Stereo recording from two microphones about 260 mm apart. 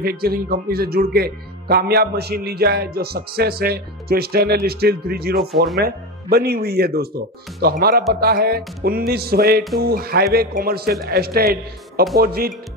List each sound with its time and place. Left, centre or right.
0.0 s speech: right